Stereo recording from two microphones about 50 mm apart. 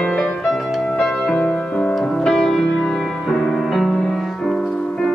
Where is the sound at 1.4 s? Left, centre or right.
Left.